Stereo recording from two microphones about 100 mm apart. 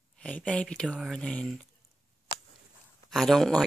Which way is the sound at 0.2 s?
10° left (ahead or behind).